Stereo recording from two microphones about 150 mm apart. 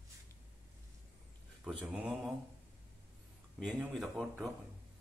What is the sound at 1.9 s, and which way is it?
Speech, 5° right (ahead or behind).